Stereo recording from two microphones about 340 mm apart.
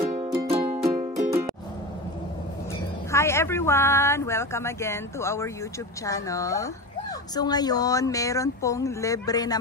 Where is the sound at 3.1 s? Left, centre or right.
Centre.